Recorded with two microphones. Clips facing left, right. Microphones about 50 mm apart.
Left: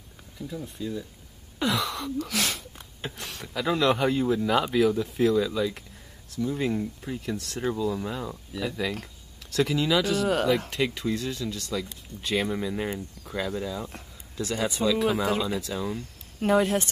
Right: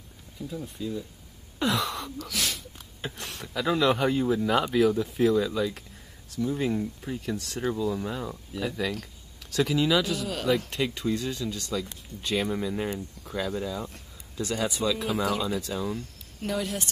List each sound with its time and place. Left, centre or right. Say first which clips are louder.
0.5 s speech: even; centre
1.6 s gasp: even; centre
2.1 s speech: left 3 dB; left
3.0 s speech: even; centre
16.3 s speech: left 8 dB; left